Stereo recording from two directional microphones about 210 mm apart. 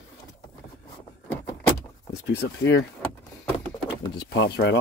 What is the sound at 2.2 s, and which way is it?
Speech, 55° left (ahead or behind).